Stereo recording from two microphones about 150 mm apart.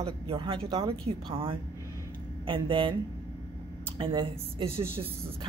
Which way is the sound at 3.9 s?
35° right (ahead or behind).